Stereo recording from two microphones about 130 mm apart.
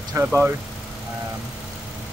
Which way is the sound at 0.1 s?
15° right (ahead or behind).